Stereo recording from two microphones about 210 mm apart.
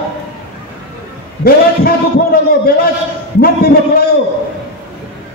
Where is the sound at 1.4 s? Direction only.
45° left (ahead or behind).